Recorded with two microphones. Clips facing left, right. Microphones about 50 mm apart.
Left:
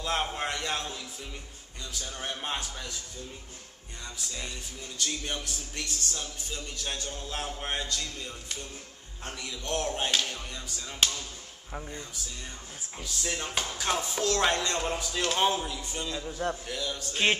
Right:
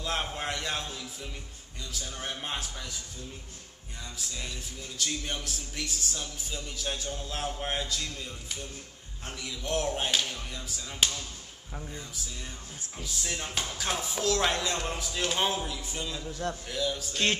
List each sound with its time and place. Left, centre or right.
0.0 s speech: centre
4.2 s speech: centre
13.0 s speech: centre
16.2 s a man's voice: centre
16.6 s speech: centre
17.1 s a man's voice: centre